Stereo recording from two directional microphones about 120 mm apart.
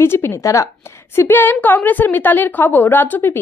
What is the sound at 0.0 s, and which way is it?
A woman's voice, 20° left (ahead or behind).